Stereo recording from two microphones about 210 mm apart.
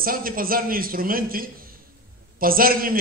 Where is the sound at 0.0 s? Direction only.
45° right (ahead or behind).